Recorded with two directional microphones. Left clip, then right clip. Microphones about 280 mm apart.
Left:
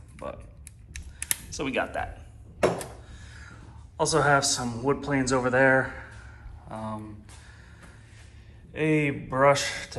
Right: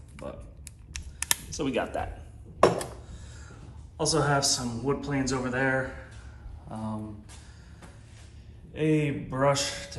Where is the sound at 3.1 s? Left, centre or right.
Centre.